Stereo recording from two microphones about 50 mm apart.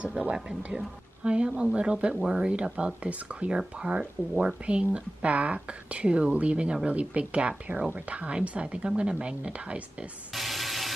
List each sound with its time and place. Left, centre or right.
0.0 s speech: right
10.3 s water: centre